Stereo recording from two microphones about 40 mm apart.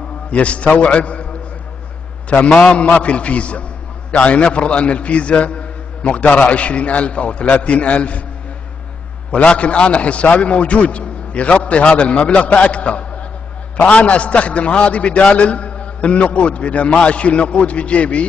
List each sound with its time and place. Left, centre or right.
0.3 s a man's voice: left
2.2 s a man's voice: left
9.5 s a man's voice: left